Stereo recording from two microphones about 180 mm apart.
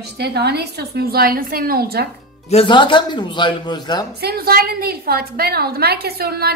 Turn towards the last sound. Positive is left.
turn(degrees=-60)  # may be behind; listen again after turning